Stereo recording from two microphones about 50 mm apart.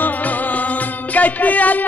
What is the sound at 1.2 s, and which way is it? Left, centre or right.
Music, left.